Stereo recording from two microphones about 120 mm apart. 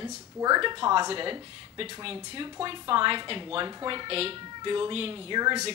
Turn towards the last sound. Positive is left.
turn(degrees=-35)  # may be behind; listen again after turning